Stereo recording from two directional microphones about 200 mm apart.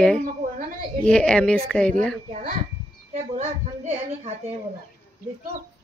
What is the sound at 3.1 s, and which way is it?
Speech, 35° right (ahead or behind).